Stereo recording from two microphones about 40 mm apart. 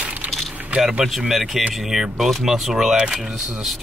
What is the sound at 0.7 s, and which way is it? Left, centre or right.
Speech, centre.